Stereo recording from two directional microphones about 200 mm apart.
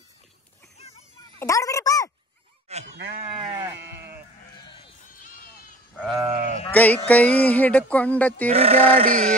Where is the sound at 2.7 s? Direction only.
30° right (ahead or behind).